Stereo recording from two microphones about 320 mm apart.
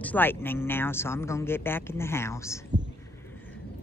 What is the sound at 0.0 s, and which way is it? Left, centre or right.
Speech, centre.